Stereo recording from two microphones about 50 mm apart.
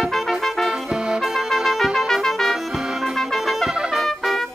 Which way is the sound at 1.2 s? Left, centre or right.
Centre.